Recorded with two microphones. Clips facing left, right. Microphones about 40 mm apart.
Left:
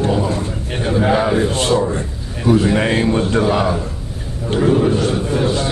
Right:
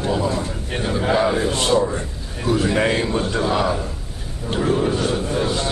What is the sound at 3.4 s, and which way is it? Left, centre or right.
Speech, left.